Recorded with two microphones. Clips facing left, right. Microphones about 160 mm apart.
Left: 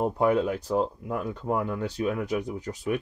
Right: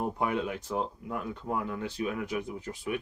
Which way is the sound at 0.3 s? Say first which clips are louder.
Left 7 dB; 35° left (ahead or behind).